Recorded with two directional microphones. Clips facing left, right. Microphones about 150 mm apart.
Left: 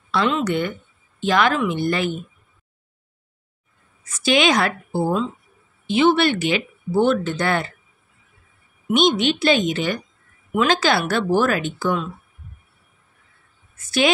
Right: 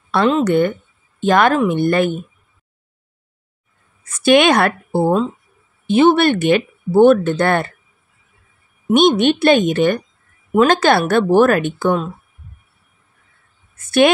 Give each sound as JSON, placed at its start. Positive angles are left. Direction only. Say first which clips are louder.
{"t": 0.1, "sound": "speech", "louder": "right 6 dB", "side_deg": -50}
{"t": 4.0, "sound": "a woman's voice", "louder": "right 6 dB", "side_deg": -55}
{"t": 8.9, "sound": "a woman's voice", "louder": "right 6 dB", "side_deg": -55}
{"t": 13.7, "sound": "a woman's voice", "louder": "right 6 dB", "side_deg": -55}